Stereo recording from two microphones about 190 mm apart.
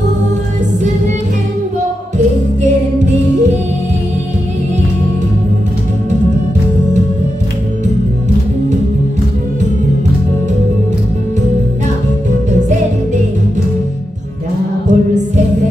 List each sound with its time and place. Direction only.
14.9 s music: 40° right (ahead or behind)